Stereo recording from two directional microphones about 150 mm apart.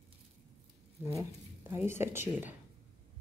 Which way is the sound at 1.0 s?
15° right (ahead or behind).